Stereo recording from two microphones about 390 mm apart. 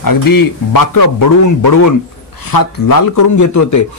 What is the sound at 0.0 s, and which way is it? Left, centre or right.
A man's voice, left.